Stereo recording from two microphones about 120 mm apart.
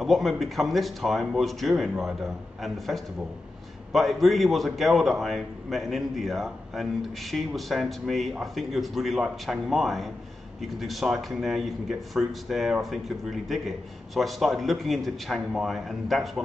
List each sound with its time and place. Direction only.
0.0 s a man's voice: centre (ahead or behind)